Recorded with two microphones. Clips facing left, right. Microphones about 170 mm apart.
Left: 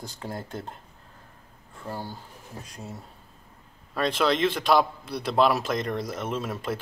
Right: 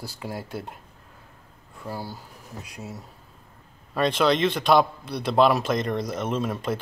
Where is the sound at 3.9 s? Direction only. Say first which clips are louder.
Right 3 dB; centre (ahead or behind).